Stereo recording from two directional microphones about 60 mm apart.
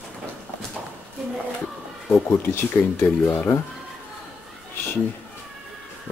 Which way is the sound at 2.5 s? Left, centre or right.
Left.